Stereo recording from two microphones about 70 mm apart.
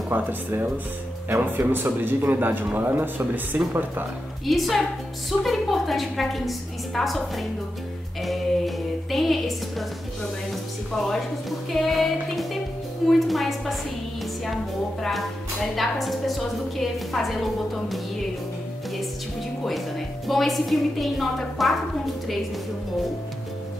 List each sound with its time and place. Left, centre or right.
0.1 s a man's voice: right
1.7 s a man's voice: right
4.5 s a woman's voice: centre
15.0 s a woman's voice: centre
20.2 s a woman's voice: centre